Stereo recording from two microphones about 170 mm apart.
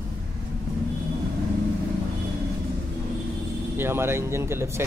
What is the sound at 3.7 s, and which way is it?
Speech, 15° right (ahead or behind).